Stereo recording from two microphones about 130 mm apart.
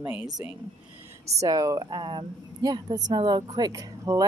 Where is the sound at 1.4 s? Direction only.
30° right (ahead or behind).